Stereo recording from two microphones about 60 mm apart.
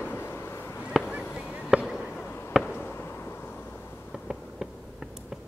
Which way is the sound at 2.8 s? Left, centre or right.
Left.